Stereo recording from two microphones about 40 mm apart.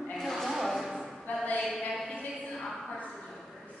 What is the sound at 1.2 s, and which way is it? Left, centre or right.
Music, left.